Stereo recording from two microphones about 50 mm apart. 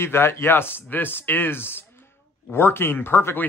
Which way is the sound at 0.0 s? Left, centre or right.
Left.